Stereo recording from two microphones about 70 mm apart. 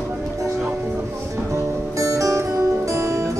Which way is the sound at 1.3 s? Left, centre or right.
Right.